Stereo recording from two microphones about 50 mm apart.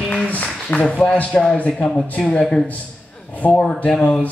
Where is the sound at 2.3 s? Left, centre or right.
Centre.